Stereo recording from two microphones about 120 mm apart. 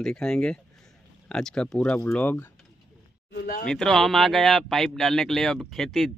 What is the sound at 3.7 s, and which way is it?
Speech, 5° left (ahead or behind).